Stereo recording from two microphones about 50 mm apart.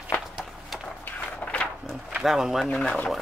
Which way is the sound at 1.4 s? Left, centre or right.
Left.